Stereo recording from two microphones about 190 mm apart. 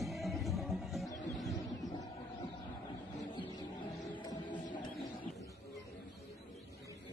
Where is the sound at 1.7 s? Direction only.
20° left (ahead or behind).